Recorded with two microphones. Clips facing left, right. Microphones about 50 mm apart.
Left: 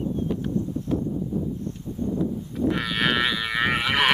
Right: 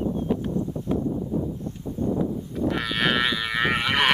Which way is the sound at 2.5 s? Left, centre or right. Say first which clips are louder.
Left 1 dB; centre.